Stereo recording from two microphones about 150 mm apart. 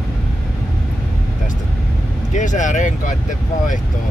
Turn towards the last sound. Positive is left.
turn(degrees=55)  # may be behind; listen again after turning